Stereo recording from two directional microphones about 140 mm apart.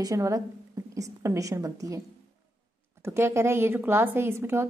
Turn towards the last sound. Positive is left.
turn(degrees=-20)  # may be behind; listen again after turning